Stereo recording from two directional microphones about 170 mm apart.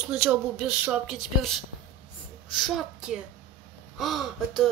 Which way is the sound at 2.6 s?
5° right (ahead or behind).